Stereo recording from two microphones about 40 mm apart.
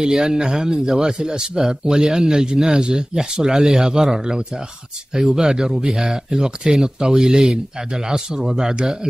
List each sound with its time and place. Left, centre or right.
0.0 s a man's voice: centre